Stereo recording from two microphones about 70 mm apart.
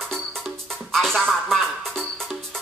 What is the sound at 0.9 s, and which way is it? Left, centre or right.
Speech, centre.